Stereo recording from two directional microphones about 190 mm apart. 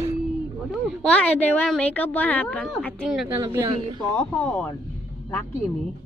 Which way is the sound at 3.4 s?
20° right (ahead or behind).